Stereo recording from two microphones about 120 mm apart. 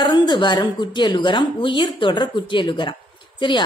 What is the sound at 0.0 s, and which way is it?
A woman's voice, 40° left (ahead or behind).